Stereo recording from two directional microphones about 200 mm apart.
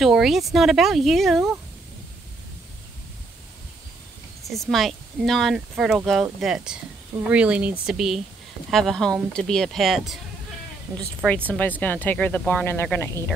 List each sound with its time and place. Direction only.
0.0 s speech: centre (ahead or behind)
4.5 s speech: centre (ahead or behind)
10.9 s speech: 15° right (ahead or behind)
11.2 s speech: 5° left (ahead or behind)